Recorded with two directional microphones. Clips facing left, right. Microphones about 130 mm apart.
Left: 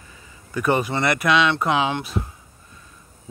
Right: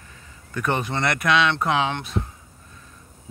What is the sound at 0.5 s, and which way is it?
Speech, 5° left (ahead or behind).